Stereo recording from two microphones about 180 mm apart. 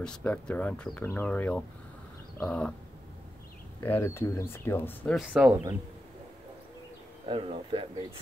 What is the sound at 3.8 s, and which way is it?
Speech, 10° left (ahead or behind).